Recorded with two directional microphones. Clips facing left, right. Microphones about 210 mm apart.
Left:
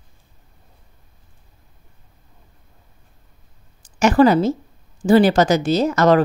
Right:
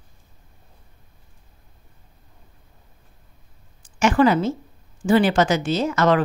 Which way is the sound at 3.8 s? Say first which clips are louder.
Left 4 dB; 40° left (ahead or behind).